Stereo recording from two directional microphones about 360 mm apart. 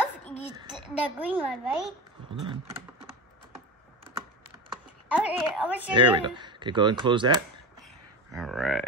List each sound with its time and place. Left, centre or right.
0.3 s a sound: centre
0.7 s a child's voice: centre
2.5 s typing: centre
5.0 s a woman's voice: centre
8.3 s speech: centre